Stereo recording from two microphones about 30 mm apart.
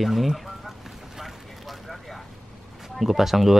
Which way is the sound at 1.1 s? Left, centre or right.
Centre.